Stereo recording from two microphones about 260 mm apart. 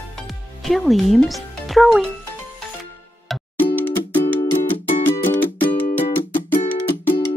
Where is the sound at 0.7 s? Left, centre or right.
Centre.